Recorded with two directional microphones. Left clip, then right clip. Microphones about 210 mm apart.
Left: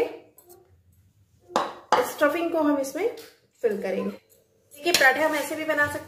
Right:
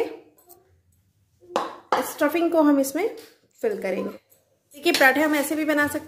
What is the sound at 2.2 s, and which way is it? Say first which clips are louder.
A woman's voice: right 3 dB; 45° right (ahead or behind).